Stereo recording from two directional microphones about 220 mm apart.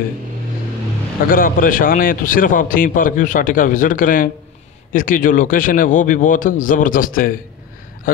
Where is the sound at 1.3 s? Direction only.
40° left (ahead or behind).